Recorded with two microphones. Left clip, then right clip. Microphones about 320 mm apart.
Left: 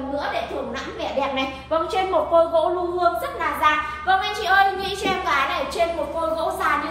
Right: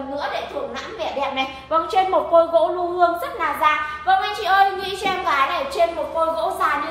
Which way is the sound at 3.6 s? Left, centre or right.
Centre.